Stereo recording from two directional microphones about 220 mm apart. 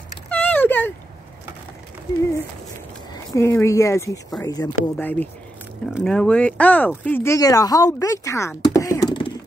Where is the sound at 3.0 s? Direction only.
15° left (ahead or behind).